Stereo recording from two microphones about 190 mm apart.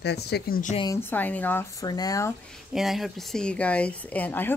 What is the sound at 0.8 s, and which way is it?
A woman's voice, 15° left (ahead or behind).